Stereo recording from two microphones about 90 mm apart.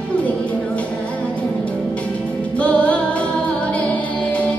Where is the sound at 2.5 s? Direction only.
15° left (ahead or behind).